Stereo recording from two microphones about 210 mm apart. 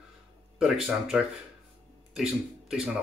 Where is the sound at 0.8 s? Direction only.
5° right (ahead or behind).